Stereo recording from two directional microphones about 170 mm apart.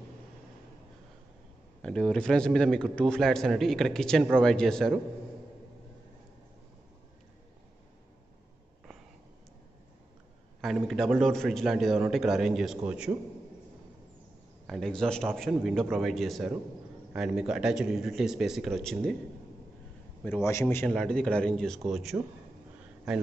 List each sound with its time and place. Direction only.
1.8 s a man's voice: 5° left (ahead or behind)
10.6 s a man's voice: centre (ahead or behind)
14.7 s a man's voice: 5° left (ahead or behind)
20.2 s a man's voice: 15° left (ahead or behind); by 22.1 s centre (ahead or behind)